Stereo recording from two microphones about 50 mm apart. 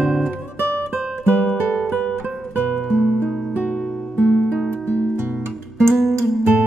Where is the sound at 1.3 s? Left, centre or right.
Centre.